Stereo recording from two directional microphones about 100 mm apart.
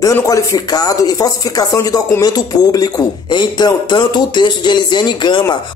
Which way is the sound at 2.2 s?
40° left (ahead or behind).